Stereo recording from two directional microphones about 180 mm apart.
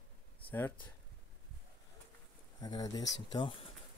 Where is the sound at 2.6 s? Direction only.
20° left (ahead or behind).